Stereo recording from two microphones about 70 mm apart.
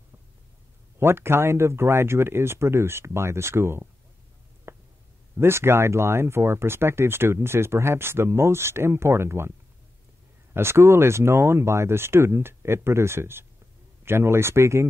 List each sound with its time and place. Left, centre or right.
0.9 s speech: right
4.7 s a sound: right
5.4 s speech: right
10.5 s speech: right